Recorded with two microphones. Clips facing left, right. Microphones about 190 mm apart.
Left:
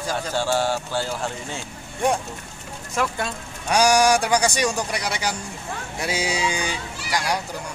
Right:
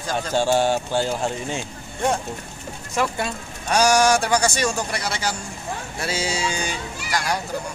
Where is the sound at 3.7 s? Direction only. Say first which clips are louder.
Even; 15° left (ahead or behind).